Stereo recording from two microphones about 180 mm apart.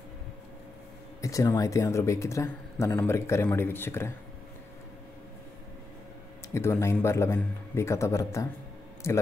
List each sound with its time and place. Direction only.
1.2 s speech: 15° left (ahead or behind)
6.5 s speech: 15° left (ahead or behind)